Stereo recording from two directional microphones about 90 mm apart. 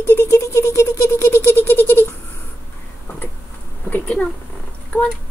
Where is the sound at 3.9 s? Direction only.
15° left (ahead or behind).